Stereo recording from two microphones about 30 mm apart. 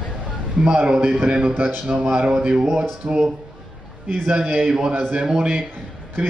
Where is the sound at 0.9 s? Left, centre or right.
Right.